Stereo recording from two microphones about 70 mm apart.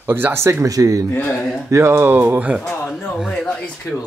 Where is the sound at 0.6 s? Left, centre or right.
Right.